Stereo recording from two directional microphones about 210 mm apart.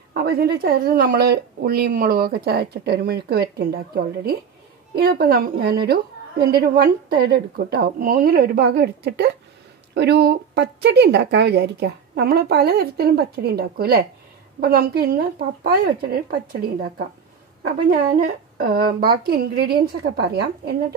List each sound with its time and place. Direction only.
0.1 s speech: 45° right (ahead or behind)
17.8 s speech: 45° right (ahead or behind)